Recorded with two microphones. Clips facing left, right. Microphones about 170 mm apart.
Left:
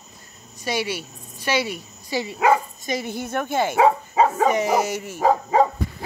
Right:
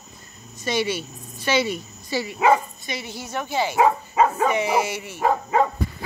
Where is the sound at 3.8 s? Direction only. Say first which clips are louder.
Left 1 dB; 30° left (ahead or behind).